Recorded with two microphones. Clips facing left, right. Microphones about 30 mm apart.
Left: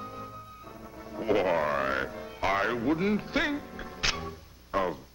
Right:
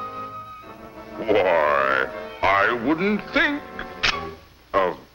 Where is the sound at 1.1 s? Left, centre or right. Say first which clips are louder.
Right 7 dB; right.